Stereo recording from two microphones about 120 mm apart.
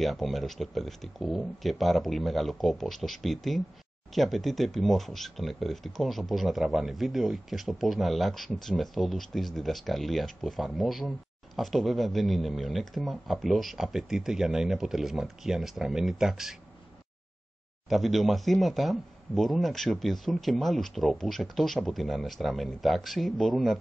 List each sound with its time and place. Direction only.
0.0 s speech: centre (ahead or behind)
17.8 s speech: centre (ahead or behind)